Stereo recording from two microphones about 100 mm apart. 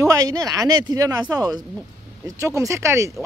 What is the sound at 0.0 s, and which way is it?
Speech, 35° right (ahead or behind).